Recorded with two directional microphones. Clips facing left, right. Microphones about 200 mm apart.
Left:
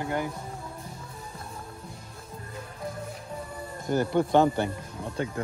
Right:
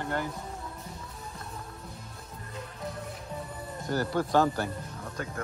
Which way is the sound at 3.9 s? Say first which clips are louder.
Left 4 dB; 20° left (ahead or behind).